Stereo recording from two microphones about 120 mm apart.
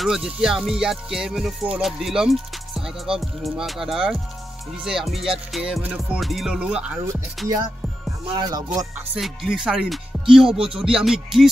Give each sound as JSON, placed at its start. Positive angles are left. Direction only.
{"t": 0.0, "sound": "music", "side_deg": -5}
{"t": 6.1, "sound": "music", "side_deg": 0}
{"t": 8.4, "sound": "music", "side_deg": -35}
{"t": 9.1, "sound": "music", "side_deg": -5}